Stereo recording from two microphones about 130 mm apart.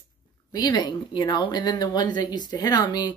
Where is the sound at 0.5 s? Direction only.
30° left (ahead or behind).